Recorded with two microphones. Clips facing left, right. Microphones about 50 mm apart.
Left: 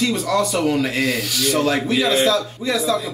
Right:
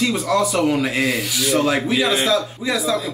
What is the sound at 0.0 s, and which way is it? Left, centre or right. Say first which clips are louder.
Speech: right 1 dB; centre.